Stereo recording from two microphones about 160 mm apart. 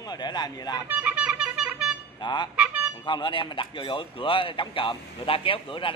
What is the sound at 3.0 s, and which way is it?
Speech, 30° left (ahead or behind).